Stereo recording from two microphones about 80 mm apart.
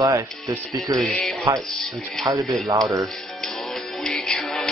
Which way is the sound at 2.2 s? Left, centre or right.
Right.